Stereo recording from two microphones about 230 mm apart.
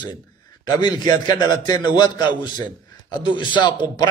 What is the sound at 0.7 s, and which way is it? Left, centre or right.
A man's voice, centre.